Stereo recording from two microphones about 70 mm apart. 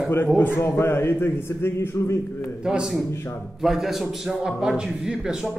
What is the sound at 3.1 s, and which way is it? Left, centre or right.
Speech, left.